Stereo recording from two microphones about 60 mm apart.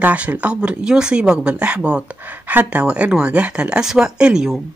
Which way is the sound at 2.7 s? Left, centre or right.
Right.